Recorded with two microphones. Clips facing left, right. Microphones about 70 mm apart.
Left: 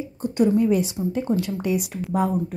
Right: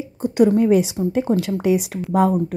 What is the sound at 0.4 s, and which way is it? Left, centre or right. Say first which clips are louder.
A woman's voice: right 4 dB; right.